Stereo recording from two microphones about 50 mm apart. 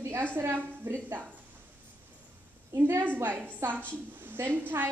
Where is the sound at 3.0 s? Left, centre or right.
Right.